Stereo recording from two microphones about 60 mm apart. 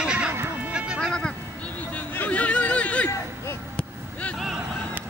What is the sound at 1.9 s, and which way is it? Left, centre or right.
Hubbub, left.